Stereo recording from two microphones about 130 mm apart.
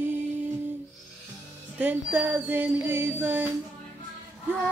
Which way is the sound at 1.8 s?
15° right (ahead or behind).